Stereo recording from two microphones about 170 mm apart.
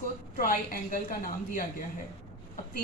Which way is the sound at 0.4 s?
55° left (ahead or behind).